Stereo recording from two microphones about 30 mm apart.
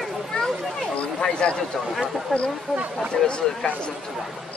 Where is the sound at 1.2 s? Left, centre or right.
Left.